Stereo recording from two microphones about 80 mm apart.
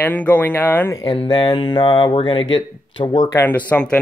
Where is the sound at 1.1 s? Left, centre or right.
Left.